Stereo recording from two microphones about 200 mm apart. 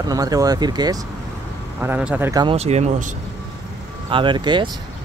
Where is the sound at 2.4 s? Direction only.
30° right (ahead or behind).